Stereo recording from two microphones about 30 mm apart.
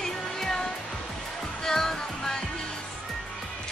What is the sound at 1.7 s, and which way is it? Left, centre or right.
Music, centre.